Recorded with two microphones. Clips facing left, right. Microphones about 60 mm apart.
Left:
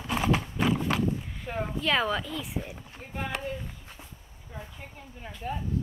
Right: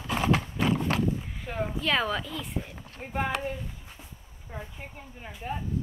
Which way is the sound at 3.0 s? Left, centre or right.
Right.